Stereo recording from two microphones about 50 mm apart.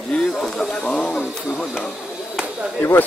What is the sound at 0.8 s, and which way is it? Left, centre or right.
Speech, left.